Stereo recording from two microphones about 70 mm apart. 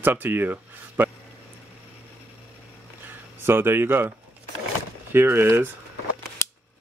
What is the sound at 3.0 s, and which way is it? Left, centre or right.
Speech, right.